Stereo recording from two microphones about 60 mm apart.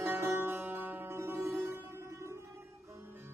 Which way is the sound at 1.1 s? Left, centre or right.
Right.